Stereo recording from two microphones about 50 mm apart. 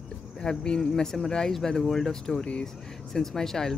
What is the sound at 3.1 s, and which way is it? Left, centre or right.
Speech, centre.